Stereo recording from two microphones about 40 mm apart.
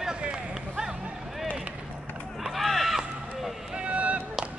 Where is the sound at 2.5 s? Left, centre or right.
Centre.